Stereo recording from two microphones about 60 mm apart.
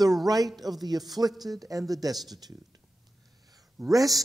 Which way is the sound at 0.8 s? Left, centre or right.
Right.